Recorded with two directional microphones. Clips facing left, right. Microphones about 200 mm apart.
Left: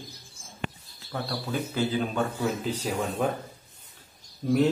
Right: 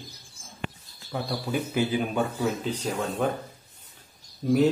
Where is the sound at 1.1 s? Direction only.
10° right (ahead or behind).